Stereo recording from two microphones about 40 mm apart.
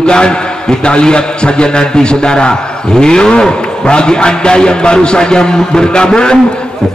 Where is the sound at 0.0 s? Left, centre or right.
Left.